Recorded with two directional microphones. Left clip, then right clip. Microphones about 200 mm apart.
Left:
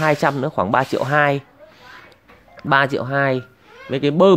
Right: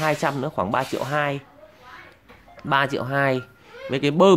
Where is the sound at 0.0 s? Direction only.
20° left (ahead or behind).